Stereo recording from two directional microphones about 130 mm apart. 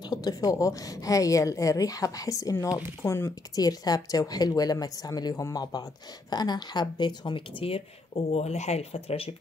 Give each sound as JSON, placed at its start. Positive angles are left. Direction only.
{"t": 0.0, "sound": "speech", "side_deg": 30}
{"t": 8.3, "sound": "speech", "side_deg": 55}